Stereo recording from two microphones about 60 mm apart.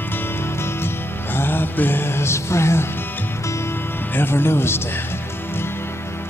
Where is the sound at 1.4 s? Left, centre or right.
Left.